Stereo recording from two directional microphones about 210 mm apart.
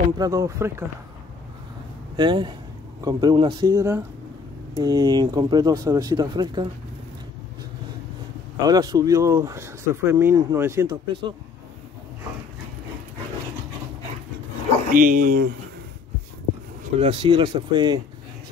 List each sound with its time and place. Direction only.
0.2 s speech: 15° right (ahead or behind)
2.1 s speech: 20° right (ahead or behind)
8.6 s speech: 20° right (ahead or behind)
14.9 s speech: 40° right (ahead or behind)
17.0 s speech: 25° right (ahead or behind)